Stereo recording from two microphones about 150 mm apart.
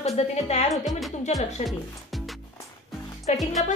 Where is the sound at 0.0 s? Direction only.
45° left (ahead or behind).